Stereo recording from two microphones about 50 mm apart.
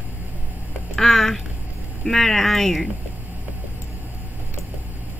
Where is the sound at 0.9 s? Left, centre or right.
Centre.